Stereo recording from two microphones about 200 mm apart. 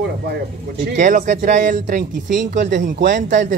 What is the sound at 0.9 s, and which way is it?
Speech, 40° right (ahead or behind).